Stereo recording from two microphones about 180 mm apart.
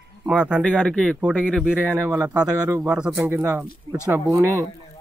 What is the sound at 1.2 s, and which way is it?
Speech, 5° right (ahead or behind).